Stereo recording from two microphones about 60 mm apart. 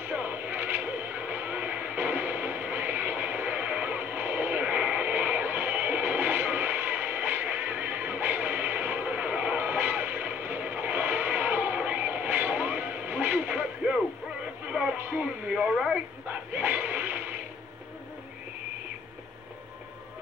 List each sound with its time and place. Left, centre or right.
0.1 s radio: right
14.7 s music: centre
15.0 s music: right
15.4 s radio: centre
16.3 s a sound: right